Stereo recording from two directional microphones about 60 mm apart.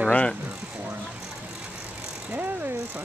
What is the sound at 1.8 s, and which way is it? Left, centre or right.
Vehicle, centre.